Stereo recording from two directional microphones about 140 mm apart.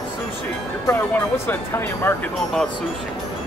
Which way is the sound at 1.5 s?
15° left (ahead or behind).